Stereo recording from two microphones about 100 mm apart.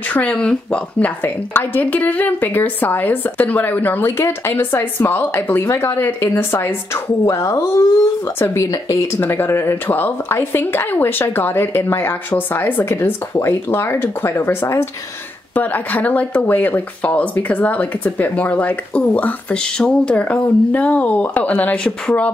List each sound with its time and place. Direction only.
0.1 s a woman's voice: 15° left (ahead or behind)